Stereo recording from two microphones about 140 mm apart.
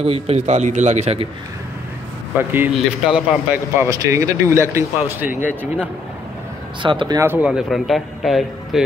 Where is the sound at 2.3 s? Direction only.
15° right (ahead or behind).